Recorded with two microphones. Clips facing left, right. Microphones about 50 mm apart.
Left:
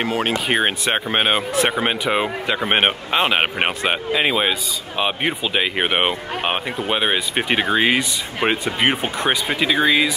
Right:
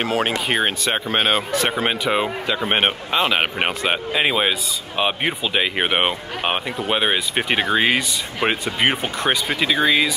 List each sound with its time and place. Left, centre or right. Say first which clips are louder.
0.0 s speech: right 1 dB; centre
0.5 s speech: left 1 dB; centre
2.7 s speech: left 2 dB; left
3.9 s speech: left 1 dB; centre
8.9 s speech: left 1 dB; centre